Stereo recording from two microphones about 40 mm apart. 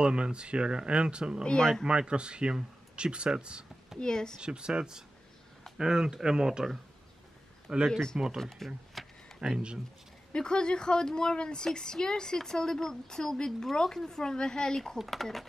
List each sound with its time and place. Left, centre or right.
0.0 s speech: right
1.4 s speech: left
1.9 s speech: right
4.0 s speech: centre
4.4 s speech: right
8.4 s speech: centre
9.0 s a sound: centre
9.4 s speech: right
10.3 s speech: left
15.0 s speech: centre